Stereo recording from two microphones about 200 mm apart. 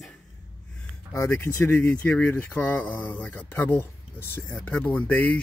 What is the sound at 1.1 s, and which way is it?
Speech, 15° left (ahead or behind).